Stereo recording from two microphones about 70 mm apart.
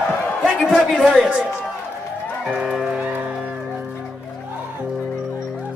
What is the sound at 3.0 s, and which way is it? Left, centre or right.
Music, centre.